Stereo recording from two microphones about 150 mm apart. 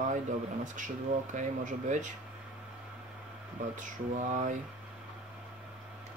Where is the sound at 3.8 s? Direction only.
55° right (ahead or behind).